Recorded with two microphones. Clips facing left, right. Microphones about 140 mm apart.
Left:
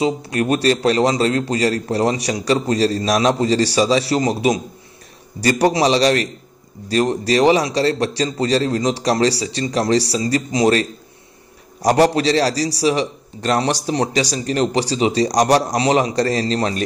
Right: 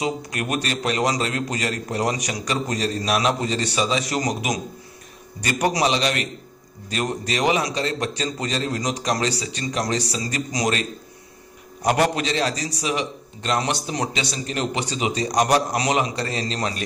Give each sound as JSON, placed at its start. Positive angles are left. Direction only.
{"t": 0.0, "sound": "a man's voice", "side_deg": 30}